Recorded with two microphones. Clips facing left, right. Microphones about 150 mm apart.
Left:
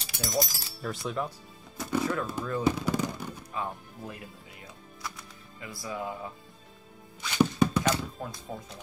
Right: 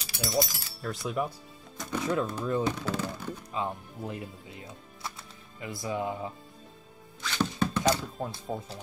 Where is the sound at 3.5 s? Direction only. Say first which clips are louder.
Right 3 dB; 20° right (ahead or behind).